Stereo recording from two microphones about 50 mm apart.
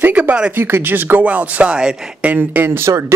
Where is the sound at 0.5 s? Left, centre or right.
Right.